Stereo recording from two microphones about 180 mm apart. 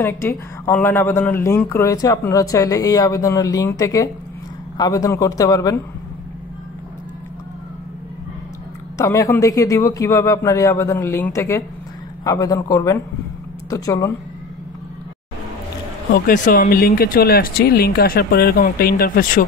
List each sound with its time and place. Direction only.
0.0 s a man's voice: 15° left (ahead or behind)
8.9 s a man's voice: 15° left (ahead or behind)
16.1 s speech: 55° left (ahead or behind)